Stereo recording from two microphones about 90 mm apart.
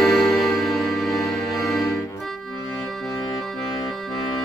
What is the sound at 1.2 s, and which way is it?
Music, 35° left (ahead or behind).